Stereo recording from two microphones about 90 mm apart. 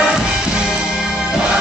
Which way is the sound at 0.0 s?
10° right (ahead or behind).